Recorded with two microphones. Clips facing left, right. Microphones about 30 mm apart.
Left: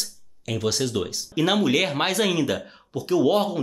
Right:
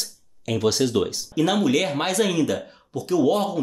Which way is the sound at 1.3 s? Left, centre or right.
Centre.